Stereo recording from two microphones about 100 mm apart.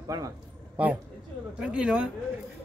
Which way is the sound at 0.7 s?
15° right (ahead or behind).